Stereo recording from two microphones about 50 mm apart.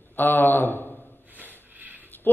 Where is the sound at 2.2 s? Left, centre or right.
Left.